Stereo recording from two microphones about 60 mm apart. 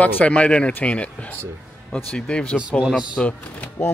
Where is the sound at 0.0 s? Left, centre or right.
Left.